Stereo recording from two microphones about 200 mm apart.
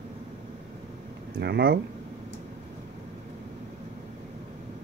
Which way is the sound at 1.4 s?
55° right (ahead or behind).